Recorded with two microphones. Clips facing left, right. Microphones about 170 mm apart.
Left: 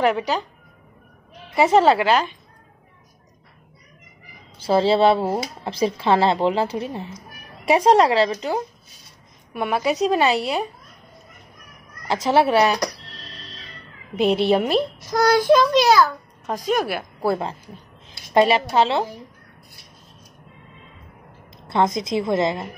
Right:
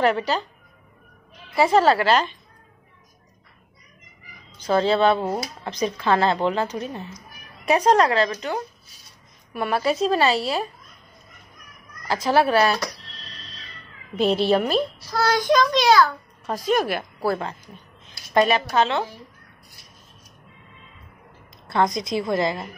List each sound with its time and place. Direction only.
0.0 s a child's voice: 15° left (ahead or behind)
1.5 s speech: 20° left (ahead or behind)
4.6 s a child's voice: 30° left (ahead or behind)
12.1 s speech: 25° left (ahead or behind)
14.2 s a woman's voice: 65° left (ahead or behind)
14.5 s a child's voice: 25° left (ahead or behind)
17.2 s speech: 25° left (ahead or behind)
21.6 s speech: 25° left (ahead or behind)